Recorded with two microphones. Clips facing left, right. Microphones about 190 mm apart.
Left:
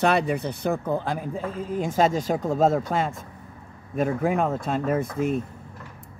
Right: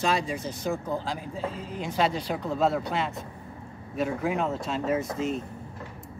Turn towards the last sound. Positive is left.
turn(degrees=55)  # may be behind; listen again after turning